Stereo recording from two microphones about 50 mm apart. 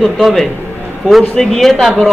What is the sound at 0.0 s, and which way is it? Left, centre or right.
A woman's voice, centre.